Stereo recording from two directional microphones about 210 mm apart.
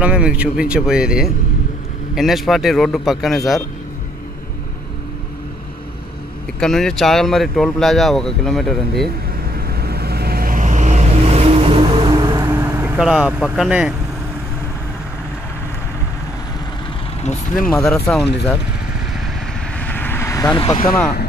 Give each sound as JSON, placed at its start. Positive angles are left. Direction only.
{"t": 0.0, "sound": "speech", "side_deg": -5}
{"t": 6.6, "sound": "speech", "side_deg": 0}
{"t": 9.6, "sound": "vehicle", "side_deg": -50}
{"t": 17.2, "sound": "speech", "side_deg": 35}
{"t": 17.6, "sound": "speech", "side_deg": 0}
{"t": 19.8, "sound": "vehicle", "side_deg": 10}